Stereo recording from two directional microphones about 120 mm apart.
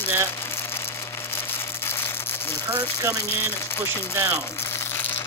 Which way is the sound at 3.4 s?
20° left (ahead or behind).